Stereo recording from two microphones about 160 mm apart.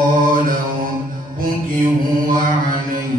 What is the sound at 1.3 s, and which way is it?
Mantra, 60° right (ahead or behind).